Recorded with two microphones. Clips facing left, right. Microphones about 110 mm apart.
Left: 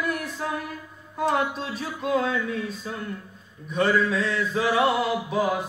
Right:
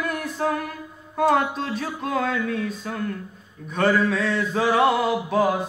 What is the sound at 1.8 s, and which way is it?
Speech, 55° right (ahead or behind).